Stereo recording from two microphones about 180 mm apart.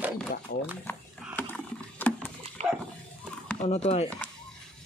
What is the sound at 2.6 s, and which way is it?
Dog, 40° right (ahead or behind).